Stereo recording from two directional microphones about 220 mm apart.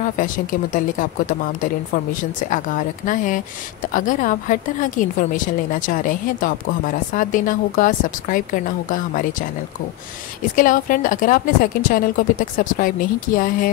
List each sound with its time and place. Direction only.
0.0 s a woman's voice: 40° left (ahead or behind)
3.1 s a woman's voice: 35° left (ahead or behind)
10.5 s a woman's voice: 35° left (ahead or behind)